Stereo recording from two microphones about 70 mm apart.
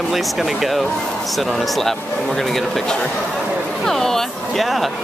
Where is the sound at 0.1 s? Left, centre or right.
Centre.